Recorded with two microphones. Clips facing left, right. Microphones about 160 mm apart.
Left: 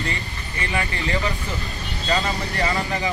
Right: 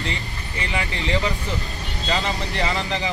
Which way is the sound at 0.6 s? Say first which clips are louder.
Left 1 dB; 20° right (ahead or behind).